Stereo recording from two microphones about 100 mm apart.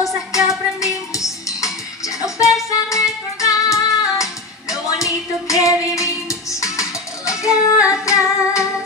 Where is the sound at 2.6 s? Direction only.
30° left (ahead or behind).